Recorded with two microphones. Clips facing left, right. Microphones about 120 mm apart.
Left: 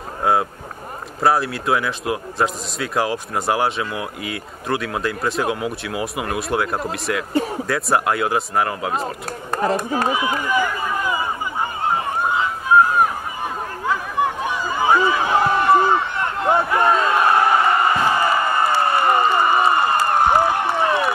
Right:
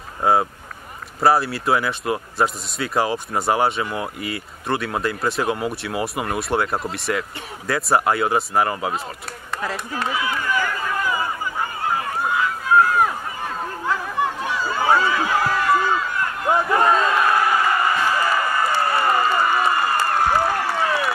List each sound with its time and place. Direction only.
0.2 s speech: centre (ahead or behind)
9.0 s speech: 45° left (ahead or behind)
10.0 s run: 20° left (ahead or behind)
14.1 s a sound: 15° left (ahead or behind)